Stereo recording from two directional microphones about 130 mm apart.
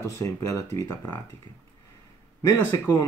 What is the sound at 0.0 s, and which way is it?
Speech, 20° left (ahead or behind).